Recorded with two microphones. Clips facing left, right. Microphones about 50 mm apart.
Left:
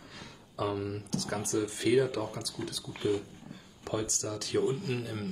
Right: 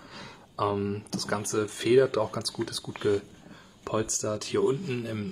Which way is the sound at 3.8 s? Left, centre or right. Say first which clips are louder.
Right 5 dB; right.